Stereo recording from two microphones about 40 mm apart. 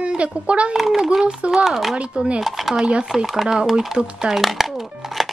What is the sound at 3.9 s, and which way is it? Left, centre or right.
Speech, right.